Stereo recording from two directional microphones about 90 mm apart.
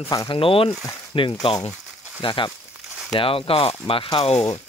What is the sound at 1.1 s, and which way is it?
Speech, 75° left (ahead or behind).